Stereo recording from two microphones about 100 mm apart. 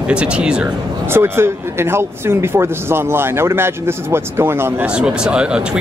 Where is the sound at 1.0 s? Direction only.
25° right (ahead or behind).